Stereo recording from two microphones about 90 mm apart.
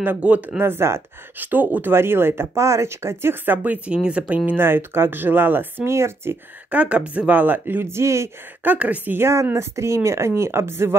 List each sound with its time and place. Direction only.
0.0 s speech: 15° right (ahead or behind)
4.5 s speech: 25° right (ahead or behind)
6.7 s speech: 15° right (ahead or behind); by 8.3 s 30° right (ahead or behind)
8.6 s speech: 15° right (ahead or behind)